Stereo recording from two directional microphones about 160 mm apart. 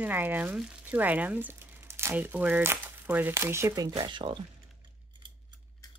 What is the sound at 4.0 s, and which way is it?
Speech, 30° right (ahead or behind).